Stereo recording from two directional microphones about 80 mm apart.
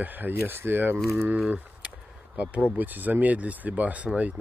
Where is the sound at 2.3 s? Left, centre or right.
Centre.